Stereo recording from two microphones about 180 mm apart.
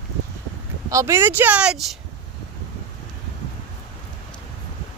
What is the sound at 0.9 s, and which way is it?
Speech, 15° right (ahead or behind).